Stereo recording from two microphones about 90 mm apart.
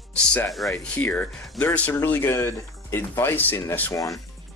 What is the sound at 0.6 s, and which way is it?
Speech, 5° left (ahead or behind).